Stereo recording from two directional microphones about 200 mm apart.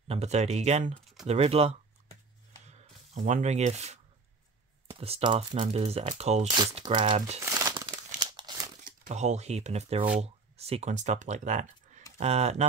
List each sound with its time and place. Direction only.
0.1 s speech: 35° right (ahead or behind)
2.6 s a sound: 35° right (ahead or behind)
5.0 s speech: 25° right (ahead or behind)
7.4 s crumpling: 15° right (ahead or behind)
8.8 s speech: 40° right (ahead or behind)